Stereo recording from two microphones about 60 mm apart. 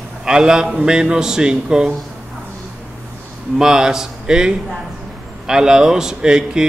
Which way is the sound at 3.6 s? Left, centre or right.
Centre.